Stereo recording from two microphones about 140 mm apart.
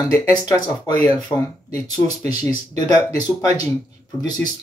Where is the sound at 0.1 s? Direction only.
20° left (ahead or behind).